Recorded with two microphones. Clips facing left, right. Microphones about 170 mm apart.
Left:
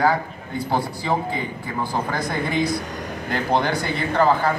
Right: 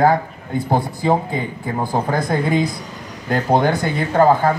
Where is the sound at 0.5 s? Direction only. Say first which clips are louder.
Right 4 dB; 20° right (ahead or behind).